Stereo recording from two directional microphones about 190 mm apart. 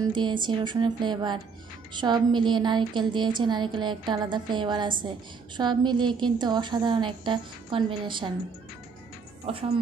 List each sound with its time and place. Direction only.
0.0 s a woman's voice: 25° right (ahead or behind)
9.5 s a woman's voice: 30° right (ahead or behind)